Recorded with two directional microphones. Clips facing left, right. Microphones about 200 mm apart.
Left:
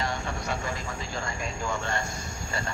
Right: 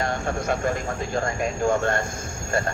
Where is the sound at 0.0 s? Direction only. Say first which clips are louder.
Right 6 dB; 50° right (ahead or behind).